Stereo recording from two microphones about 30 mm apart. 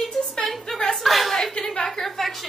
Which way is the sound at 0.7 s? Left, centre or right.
Centre.